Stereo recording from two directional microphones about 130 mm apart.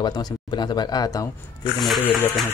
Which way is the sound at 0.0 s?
35° left (ahead or behind).